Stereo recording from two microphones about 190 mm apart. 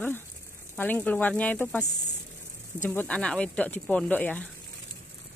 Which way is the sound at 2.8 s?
5° left (ahead or behind).